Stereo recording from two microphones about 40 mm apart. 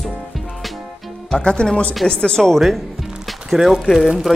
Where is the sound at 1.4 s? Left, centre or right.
Centre.